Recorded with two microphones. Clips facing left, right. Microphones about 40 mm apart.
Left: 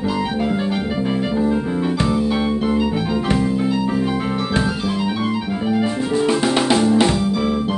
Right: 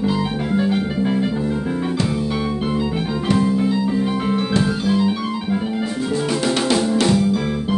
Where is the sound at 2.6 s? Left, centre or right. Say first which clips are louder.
Left 2 dB; left.